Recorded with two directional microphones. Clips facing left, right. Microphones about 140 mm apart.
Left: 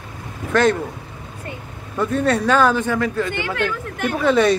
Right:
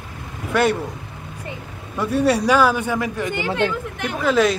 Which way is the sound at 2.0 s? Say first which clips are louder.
Right 1 dB; 5° right (ahead or behind).